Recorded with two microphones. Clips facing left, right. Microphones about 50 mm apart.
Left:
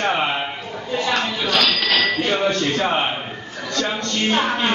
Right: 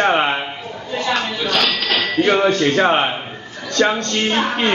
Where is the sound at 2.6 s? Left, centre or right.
Right.